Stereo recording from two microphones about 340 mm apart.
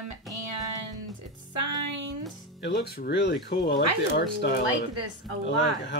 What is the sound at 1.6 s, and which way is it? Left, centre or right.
Music, right.